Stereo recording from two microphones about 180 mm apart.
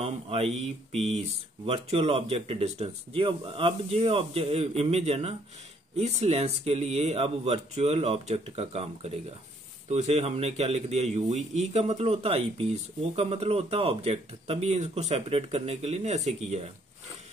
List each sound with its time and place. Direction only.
0.0 s speech: 35° right (ahead or behind)